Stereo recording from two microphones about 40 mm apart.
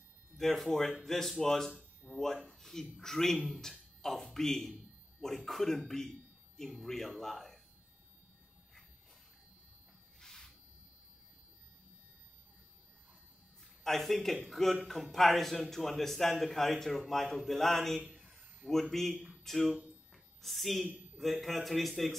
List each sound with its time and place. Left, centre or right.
0.4 s a man's voice: centre
2.1 s speech: left
2.6 s a man's voice: centre
5.9 s a sound: centre
6.8 s a man's voice: centre
10.2 s a sound: centre
13.8 s a man's voice: centre